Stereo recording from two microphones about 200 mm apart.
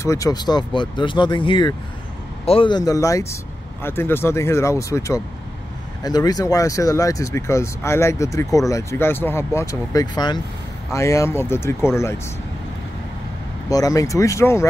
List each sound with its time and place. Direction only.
0.0 s speech: 15° left (ahead or behind)
13.7 s speech: 15° left (ahead or behind)